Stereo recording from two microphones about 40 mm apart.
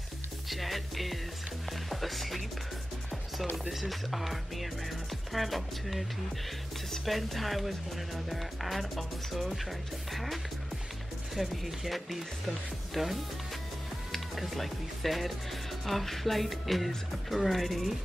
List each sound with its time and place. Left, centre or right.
0.5 s music: centre
1.7 s speech: centre
3.5 s speech: centre